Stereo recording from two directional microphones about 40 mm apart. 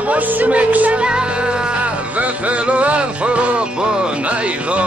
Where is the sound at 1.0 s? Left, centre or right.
Right.